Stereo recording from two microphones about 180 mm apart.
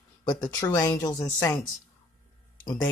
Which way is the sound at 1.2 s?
10° left (ahead or behind).